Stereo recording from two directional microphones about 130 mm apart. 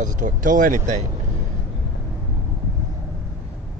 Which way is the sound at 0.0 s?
85° right.